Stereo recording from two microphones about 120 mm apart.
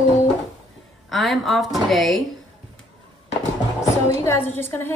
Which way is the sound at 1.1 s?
Centre (ahead or behind).